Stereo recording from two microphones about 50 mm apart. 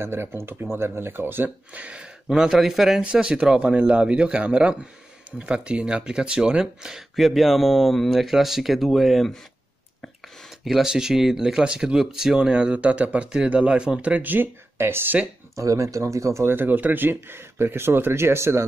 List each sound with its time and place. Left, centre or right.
0.0 s speech: right
1.7 s speech: right
2.5 s speech: centre
3.0 s speech: centre
7.2 s speech: centre
10.6 s speech: centre; by 14.5 s right
14.8 s speech: right
15.5 s speech: right
16.4 s speech: right